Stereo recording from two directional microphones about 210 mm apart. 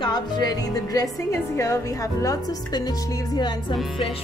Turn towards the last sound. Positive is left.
turn(degrees=20)  # may be behind; listen again after turning